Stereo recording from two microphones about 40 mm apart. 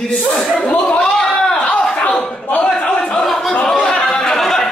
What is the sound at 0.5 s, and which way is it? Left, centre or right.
Speech, left.